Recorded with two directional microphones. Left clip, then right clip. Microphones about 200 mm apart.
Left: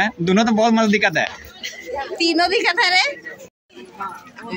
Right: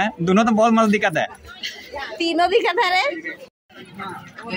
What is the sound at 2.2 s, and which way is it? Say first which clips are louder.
Speech: even; 20° right (ahead or behind).